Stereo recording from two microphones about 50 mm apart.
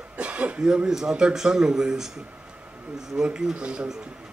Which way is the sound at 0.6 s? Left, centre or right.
Centre.